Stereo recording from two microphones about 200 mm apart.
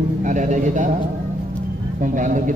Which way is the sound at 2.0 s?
40° right (ahead or behind).